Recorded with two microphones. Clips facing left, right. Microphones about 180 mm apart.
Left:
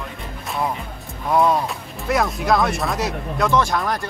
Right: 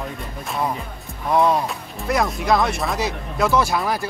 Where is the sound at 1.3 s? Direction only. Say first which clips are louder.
Even; centre (ahead or behind).